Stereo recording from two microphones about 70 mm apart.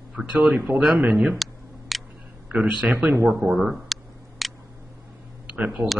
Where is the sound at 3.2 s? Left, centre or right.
Centre.